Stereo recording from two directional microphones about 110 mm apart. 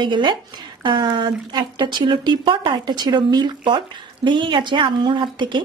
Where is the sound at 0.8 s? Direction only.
45° right (ahead or behind).